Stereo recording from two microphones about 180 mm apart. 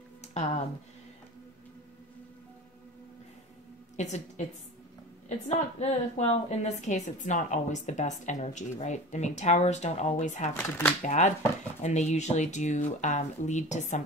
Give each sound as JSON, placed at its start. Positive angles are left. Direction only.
{"t": 0.3, "sound": "speech", "side_deg": 40}
{"t": 3.9, "sound": "a woman's voice", "side_deg": 40}
{"t": 5.8, "sound": "a woman's voice", "side_deg": 35}
{"t": 10.5, "sound": "speech", "side_deg": 10}
{"t": 11.0, "sound": "a woman's voice", "side_deg": 40}